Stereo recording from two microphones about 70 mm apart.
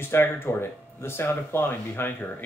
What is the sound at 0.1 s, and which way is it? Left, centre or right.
Speech, left.